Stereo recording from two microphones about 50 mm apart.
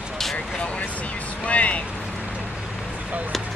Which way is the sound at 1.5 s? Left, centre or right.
Left.